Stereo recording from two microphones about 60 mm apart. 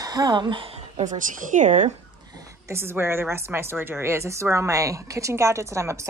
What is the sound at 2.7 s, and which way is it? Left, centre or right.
Speech, right.